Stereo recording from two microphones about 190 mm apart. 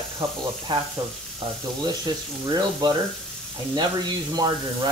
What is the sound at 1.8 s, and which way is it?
Speech, 20° right (ahead or behind).